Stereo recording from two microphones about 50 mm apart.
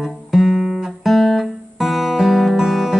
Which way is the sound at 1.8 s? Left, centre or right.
Centre.